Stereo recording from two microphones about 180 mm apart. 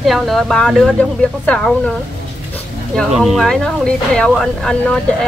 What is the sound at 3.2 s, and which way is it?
Speech, centre (ahead or behind).